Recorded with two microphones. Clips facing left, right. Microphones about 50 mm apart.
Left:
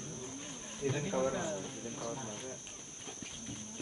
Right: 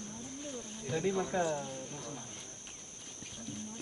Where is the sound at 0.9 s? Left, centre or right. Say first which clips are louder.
Right 2 dB; centre.